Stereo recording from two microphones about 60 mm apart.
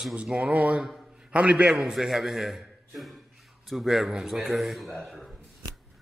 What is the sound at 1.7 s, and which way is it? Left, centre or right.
A man's voice, centre.